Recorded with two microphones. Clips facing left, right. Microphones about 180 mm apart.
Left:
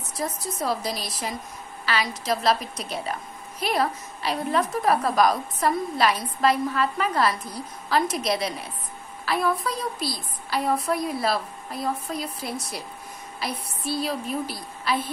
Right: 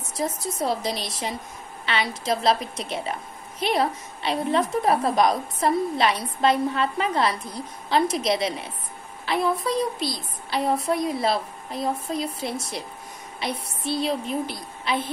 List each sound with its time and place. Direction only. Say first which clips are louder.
0.2 s a woman's voice: right 2 dB; 25° right (ahead or behind)